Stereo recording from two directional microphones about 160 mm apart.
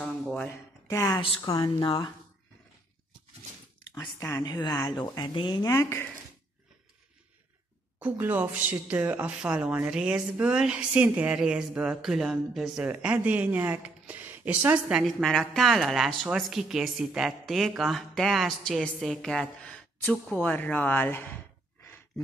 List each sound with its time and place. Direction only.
0.0 s a sound: 5° left (ahead or behind)
0.8 s speech: 20° left (ahead or behind)
3.9 s speech: 20° left (ahead or behind)
8.0 s speech: 10° right (ahead or behind); by 21.4 s 10° left (ahead or behind)